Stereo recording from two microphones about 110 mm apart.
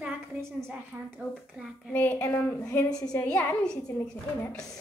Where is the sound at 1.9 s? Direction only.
15° left (ahead or behind).